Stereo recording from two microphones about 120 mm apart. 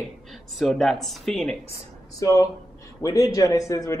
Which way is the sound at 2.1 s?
25° left (ahead or behind).